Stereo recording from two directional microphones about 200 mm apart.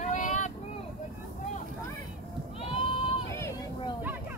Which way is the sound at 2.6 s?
30° left (ahead or behind).